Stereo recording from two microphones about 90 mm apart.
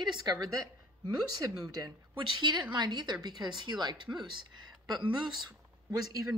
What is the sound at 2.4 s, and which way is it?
Speech, 55° right (ahead or behind).